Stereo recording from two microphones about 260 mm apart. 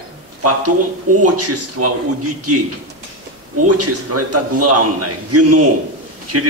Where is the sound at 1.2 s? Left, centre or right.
Right.